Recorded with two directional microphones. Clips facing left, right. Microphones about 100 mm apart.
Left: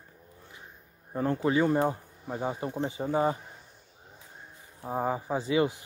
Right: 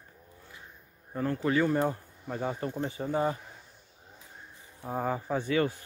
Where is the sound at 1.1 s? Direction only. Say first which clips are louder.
Left 2 dB; 25° left (ahead or behind).